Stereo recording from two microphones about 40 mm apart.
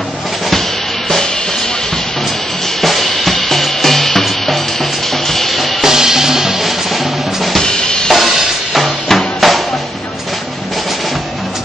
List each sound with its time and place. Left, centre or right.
2.8 s drum kit: centre
5.3 s music: centre
5.9 s music: centre
7.6 s drum kit: centre
8.1 s music: centre